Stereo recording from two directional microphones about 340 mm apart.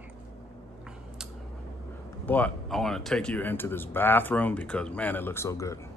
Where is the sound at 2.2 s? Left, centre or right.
Centre.